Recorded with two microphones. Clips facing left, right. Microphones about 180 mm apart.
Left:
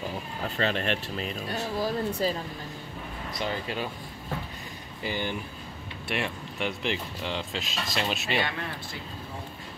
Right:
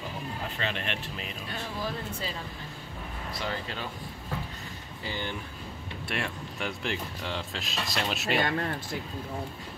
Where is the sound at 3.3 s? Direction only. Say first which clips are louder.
Left 4 dB; 15° left (ahead or behind).